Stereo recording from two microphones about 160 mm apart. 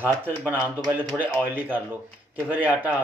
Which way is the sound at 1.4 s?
10° right (ahead or behind).